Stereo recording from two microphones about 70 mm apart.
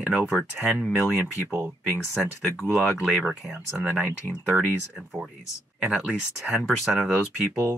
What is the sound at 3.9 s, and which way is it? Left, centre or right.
Speech, centre.